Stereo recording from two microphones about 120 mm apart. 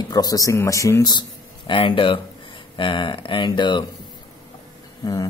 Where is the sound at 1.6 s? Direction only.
45° left (ahead or behind).